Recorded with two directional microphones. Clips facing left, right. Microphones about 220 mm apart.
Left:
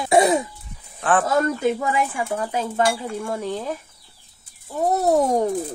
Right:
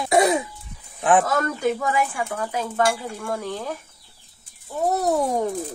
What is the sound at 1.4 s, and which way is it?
Speech, 30° left (ahead or behind).